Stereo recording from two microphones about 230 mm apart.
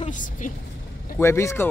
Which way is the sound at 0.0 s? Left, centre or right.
Left.